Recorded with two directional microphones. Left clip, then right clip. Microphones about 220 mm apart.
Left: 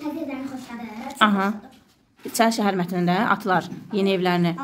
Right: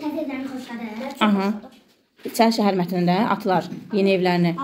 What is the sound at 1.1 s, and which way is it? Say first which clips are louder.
A woman's voice: left 2 dB; 15° left (ahead or behind).